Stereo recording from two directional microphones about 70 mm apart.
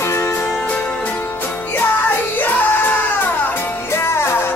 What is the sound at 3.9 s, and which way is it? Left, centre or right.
Music, left.